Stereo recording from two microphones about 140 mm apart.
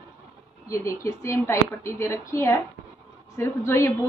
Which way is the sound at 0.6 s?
20° left (ahead or behind).